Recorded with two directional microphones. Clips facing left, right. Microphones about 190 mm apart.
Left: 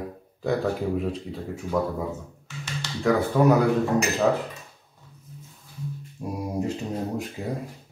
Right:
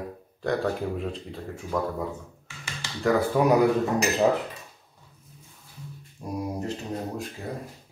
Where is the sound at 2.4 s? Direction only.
10° right (ahead or behind).